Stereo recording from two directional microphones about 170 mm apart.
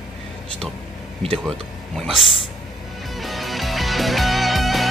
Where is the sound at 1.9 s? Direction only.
Centre (ahead or behind).